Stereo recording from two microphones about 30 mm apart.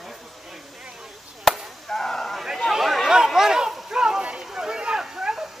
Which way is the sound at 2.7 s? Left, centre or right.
Centre.